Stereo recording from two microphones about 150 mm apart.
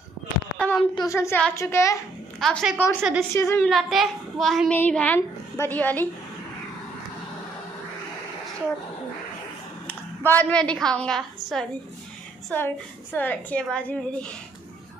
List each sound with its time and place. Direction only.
0.6 s a sound: 5° left (ahead or behind)
0.9 s a woman's voice: 20° left (ahead or behind)
2.4 s speech: centre (ahead or behind)
3.0 s a woman's voice: 10° right (ahead or behind)
3.3 s a child's voice: 20° left (ahead or behind)
3.6 s a woman's voice: centre (ahead or behind)
9.8 s a woman's voice: 10° left (ahead or behind)
12.4 s a woman's voice: 15° left (ahead or behind)